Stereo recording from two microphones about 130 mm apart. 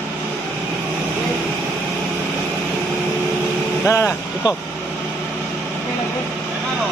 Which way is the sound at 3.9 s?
20° left (ahead or behind).